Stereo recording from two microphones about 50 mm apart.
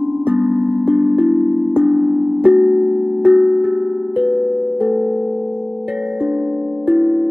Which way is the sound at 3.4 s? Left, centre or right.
Right.